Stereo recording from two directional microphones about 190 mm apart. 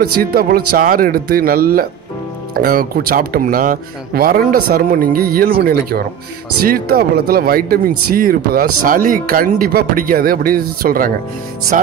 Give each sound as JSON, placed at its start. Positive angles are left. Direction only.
{"t": 0.2, "sound": "speech", "side_deg": -50}